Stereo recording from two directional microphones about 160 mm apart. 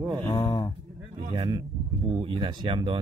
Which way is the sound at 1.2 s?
25° right (ahead or behind).